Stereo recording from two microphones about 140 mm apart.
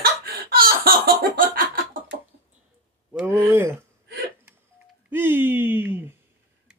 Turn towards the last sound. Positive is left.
turn(degrees=-15)  # may be behind; listen again after turning